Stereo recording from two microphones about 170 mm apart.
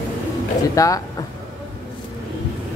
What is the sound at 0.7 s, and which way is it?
Speech, 20° left (ahead or behind).